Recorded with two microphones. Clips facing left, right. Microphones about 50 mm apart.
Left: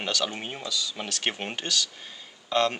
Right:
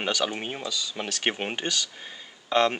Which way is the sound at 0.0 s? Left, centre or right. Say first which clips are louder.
Right 2 dB; centre.